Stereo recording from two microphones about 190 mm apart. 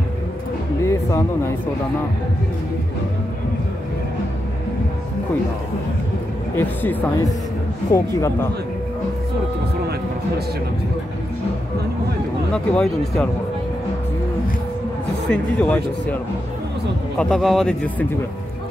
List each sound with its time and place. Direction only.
0.8 s speech: 15° left (ahead or behind)
6.5 s speech: 10° left (ahead or behind)
12.5 s speech: centre (ahead or behind)
15.2 s speech: 5° left (ahead or behind)
17.2 s speech: centre (ahead or behind)